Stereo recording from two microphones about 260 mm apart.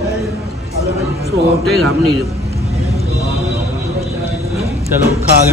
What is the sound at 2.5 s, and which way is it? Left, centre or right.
Vehicle, right.